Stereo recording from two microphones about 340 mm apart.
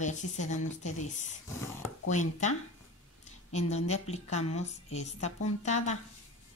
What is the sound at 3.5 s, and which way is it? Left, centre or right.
Speech, centre.